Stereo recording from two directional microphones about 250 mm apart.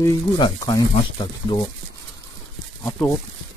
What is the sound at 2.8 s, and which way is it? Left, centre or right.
Speech, centre.